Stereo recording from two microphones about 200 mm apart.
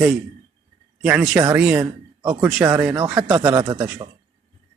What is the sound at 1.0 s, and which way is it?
Speech, 5° right (ahead or behind).